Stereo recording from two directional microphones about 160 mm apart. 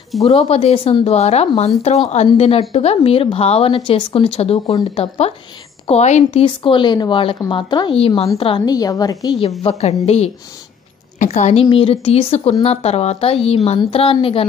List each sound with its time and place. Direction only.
0.3 s a woman's voice: 40° left (ahead or behind)
6.4 s a woman's voice: 30° left (ahead or behind)
9.6 s speech: 40° left (ahead or behind)